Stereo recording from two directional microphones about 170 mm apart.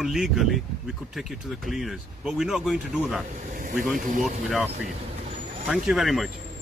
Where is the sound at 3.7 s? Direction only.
Centre (ahead or behind).